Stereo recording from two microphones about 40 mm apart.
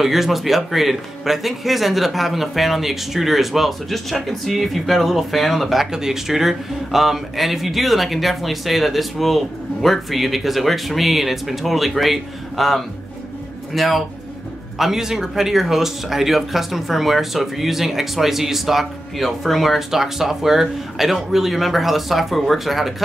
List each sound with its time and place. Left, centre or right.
0.0 s speech: centre
5.9 s speech: centre